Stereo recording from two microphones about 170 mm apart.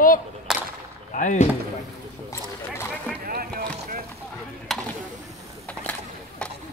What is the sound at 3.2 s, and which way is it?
Music, 60° right (ahead or behind).